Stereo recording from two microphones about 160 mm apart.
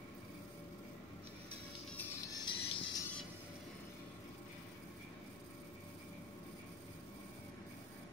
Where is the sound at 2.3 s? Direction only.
30° left (ahead or behind).